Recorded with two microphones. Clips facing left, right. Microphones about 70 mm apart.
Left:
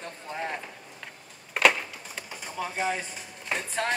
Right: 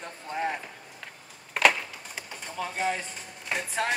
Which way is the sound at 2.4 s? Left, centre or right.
Centre.